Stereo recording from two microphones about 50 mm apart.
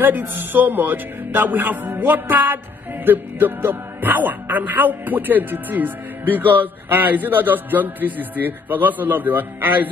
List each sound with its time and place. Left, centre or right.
0.0 s speech: right